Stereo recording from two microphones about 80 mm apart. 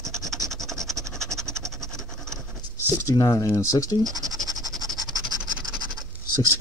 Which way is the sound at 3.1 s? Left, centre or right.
Left.